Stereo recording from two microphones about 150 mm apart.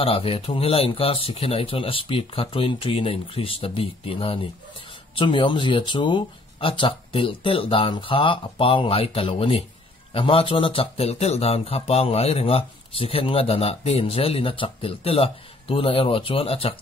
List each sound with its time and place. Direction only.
0.0 s speech: 40° left (ahead or behind)